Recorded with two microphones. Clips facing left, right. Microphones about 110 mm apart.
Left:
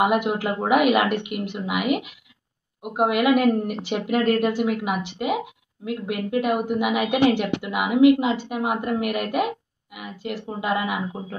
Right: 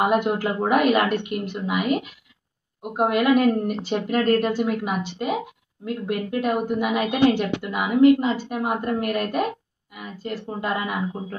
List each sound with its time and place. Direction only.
0.0 s a woman's voice: 10° left (ahead or behind)
3.6 s speech: 65° left (ahead or behind)
3.9 s a woman's voice: 10° left (ahead or behind)